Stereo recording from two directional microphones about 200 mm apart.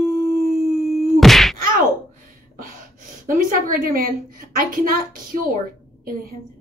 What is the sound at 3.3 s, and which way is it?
A woman's voice, 45° right (ahead or behind).